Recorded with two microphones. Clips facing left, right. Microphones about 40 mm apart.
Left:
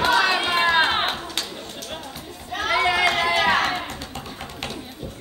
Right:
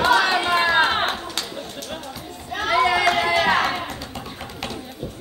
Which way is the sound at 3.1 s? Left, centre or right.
Left.